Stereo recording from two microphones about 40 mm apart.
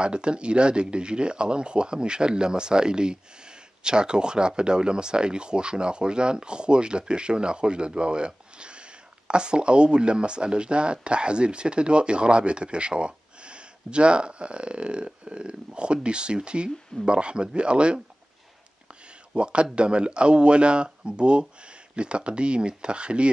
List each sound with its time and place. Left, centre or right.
0.0 s speech: right
19.0 s speech: right